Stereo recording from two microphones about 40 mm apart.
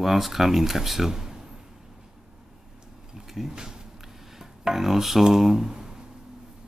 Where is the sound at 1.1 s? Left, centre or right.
Centre.